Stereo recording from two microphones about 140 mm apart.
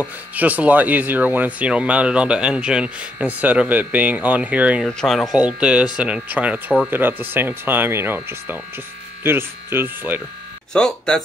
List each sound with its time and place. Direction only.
0.0 s speech: 10° right (ahead or behind)
4.8 s speech: 5° left (ahead or behind); by 10.2 s 15° right (ahead or behind)
10.7 s speech: 5° left (ahead or behind)